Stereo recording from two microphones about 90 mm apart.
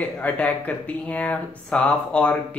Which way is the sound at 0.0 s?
15° left (ahead or behind).